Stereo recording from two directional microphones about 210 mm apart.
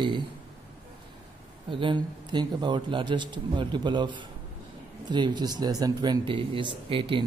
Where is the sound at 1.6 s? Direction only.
25° right (ahead or behind).